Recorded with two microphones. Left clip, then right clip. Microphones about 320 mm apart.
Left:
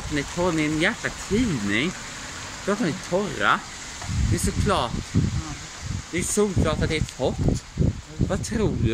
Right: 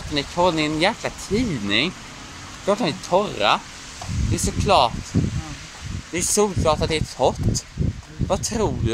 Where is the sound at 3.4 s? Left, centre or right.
Centre.